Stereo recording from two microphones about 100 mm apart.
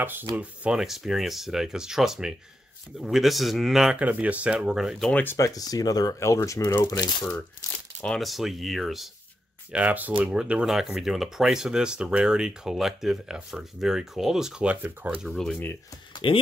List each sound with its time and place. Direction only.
0.0 s speech: 20° right (ahead or behind)
0.4 s speech: 5° right (ahead or behind)
5.1 s speech: 20° left (ahead or behind)
5.4 s speech: 35° left (ahead or behind)
8.0 s speech: 5° left (ahead or behind)
9.7 s speech: 15° right (ahead or behind)
15.2 s speech: centre (ahead or behind)
16.2 s speech: 60° left (ahead or behind)